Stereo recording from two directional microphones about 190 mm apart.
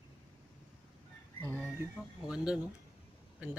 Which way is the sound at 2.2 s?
5° right (ahead or behind).